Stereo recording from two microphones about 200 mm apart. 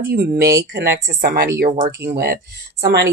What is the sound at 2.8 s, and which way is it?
Speech, 60° right (ahead or behind).